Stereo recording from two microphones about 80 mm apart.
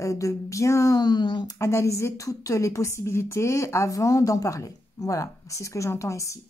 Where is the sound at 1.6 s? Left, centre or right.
Left.